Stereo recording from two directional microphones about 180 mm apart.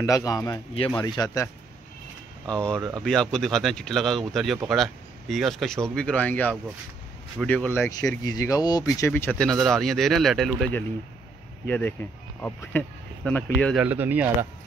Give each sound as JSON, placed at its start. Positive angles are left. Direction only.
{"t": 0.0, "sound": "speech", "side_deg": 20}
{"t": 2.4, "sound": "speech", "side_deg": 5}
{"t": 8.2, "sound": "speech", "side_deg": 20}
{"t": 11.6, "sound": "speech", "side_deg": 10}
{"t": 13.7, "sound": "speech", "side_deg": -10}